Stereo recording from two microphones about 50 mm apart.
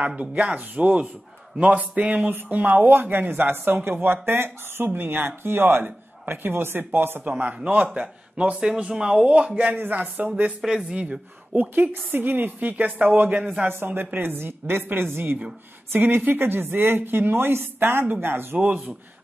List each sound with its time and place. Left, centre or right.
0.0 s speech: right
2.5 s speech: right
7.2 s speech: right
9.8 s speech: right
10.7 s speech: centre
11.7 s speech: right
13.8 s speech: right
18.6 s speech: right